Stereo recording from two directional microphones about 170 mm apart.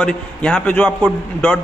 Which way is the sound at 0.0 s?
5° left (ahead or behind).